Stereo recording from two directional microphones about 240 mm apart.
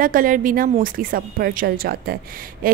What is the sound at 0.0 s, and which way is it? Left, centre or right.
A woman's voice, right.